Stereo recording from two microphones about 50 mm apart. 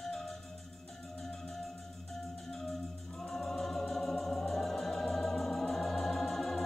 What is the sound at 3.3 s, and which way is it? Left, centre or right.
Music, centre.